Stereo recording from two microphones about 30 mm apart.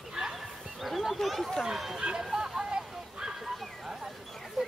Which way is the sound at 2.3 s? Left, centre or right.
Centre.